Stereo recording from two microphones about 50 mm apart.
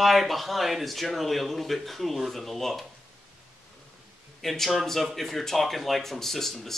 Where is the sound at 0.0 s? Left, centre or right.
Centre.